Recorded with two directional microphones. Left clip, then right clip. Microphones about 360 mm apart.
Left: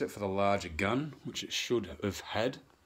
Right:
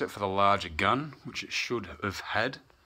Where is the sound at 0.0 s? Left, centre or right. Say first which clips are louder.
Right 5 dB; centre.